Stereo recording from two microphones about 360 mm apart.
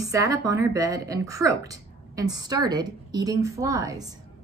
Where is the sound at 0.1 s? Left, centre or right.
Centre.